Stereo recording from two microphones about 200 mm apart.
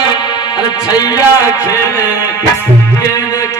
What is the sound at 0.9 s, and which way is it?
Music, 20° left (ahead or behind).